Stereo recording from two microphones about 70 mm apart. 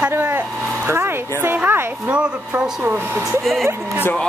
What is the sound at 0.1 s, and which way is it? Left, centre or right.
Vehicle, right.